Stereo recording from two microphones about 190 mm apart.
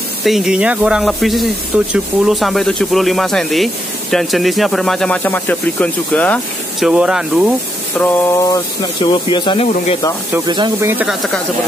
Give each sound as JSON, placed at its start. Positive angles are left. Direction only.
{"t": 0.2, "sound": "speech", "side_deg": 0}
{"t": 8.0, "sound": "a sound", "side_deg": 10}
{"t": 9.0, "sound": "speech", "side_deg": 25}
{"t": 10.4, "sound": "speech", "side_deg": -20}
{"t": 11.1, "sound": "speech", "side_deg": 0}